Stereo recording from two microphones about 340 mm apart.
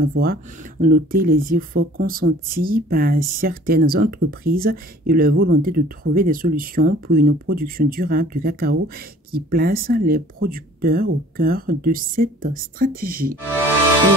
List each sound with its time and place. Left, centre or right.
0.0 s speech: right